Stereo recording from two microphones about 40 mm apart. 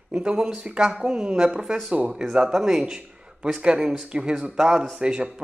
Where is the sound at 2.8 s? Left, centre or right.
Right.